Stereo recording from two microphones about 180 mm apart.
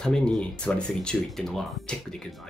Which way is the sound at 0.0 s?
5° left (ahead or behind).